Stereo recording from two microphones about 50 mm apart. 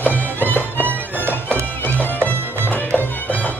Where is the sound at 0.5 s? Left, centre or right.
Left.